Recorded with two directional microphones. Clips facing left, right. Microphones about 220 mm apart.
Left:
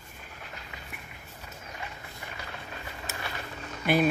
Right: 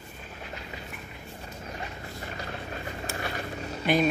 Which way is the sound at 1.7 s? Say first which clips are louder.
Right 4 dB; 35° right (ahead or behind).